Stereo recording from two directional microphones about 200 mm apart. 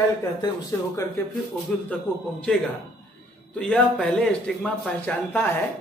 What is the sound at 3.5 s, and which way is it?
Speech, 5° left (ahead or behind).